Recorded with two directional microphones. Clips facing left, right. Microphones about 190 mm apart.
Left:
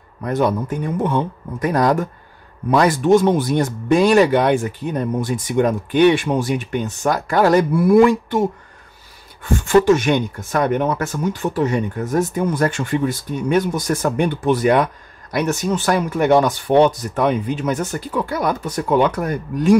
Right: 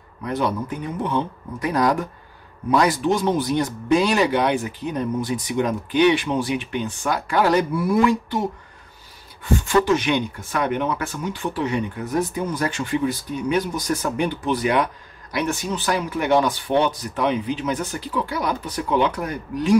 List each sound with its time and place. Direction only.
0.2 s speech: 50° left (ahead or behind)
9.4 s speech: 50° left (ahead or behind)